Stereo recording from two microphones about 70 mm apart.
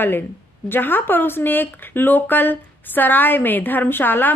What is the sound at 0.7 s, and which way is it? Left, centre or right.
Speech, left.